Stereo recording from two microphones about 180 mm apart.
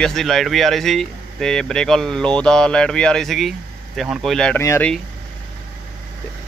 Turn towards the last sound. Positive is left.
turn(degrees=15)  # may be behind; listen again after turning